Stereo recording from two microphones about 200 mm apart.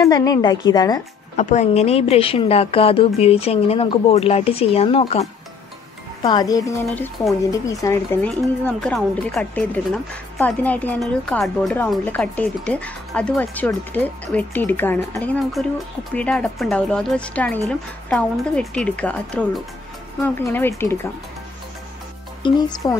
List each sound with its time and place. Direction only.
0.0 s speech: 20° left (ahead or behind)
1.3 s speech: 40° left (ahead or behind)
6.2 s speech: 20° left (ahead or behind)
22.4 s speech: 20° left (ahead or behind)